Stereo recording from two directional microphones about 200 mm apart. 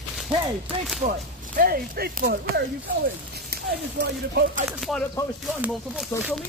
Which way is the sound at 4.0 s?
55° right (ahead or behind).